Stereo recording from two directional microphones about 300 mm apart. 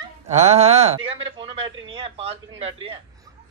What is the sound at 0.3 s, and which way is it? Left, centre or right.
A man's voice, right.